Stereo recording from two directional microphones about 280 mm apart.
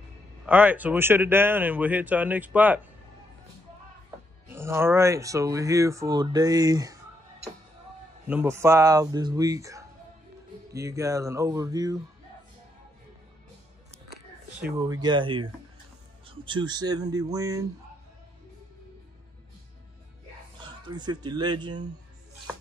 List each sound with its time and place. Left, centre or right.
0.5 s speech: centre
4.5 s speech: centre
8.3 s speech: centre
14.6 s speech: centre
20.9 s speech: centre